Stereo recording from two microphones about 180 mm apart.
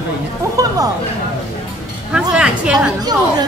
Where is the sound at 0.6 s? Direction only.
20° right (ahead or behind).